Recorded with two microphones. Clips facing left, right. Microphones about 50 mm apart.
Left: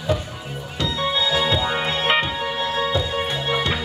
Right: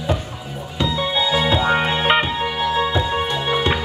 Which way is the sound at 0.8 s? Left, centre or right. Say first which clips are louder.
Right 2 dB; centre.